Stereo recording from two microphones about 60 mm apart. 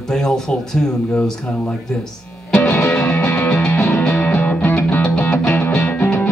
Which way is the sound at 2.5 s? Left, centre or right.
Left.